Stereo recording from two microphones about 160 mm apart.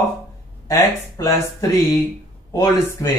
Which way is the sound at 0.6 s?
20° left (ahead or behind).